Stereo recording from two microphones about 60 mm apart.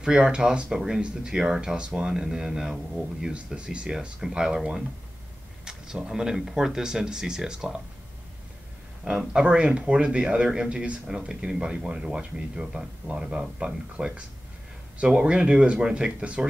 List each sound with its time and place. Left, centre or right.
0.0 s speech: centre
9.3 s speech: centre